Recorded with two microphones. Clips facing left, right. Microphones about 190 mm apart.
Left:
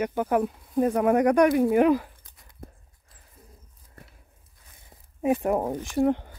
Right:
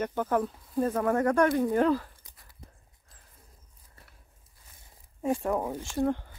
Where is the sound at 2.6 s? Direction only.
50° left (ahead or behind).